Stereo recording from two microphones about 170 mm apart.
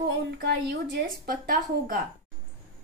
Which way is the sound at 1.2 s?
60° right (ahead or behind).